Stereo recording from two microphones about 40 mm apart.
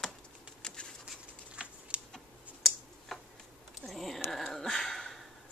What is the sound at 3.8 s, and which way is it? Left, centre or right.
Dog, centre.